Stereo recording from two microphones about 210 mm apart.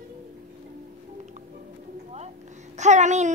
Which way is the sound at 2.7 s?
35° right (ahead or behind).